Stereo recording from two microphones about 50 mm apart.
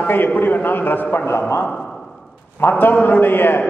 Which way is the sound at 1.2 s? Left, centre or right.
Left.